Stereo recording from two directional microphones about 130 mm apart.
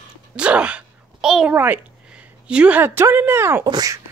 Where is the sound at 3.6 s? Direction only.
30° right (ahead or behind).